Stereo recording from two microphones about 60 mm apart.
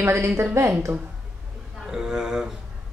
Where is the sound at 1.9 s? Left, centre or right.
Centre.